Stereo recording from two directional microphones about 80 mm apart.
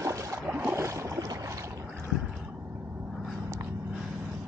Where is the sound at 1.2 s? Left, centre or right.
Right.